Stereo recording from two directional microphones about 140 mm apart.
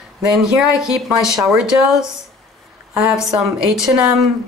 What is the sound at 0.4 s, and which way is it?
Speech, 5° right (ahead or behind).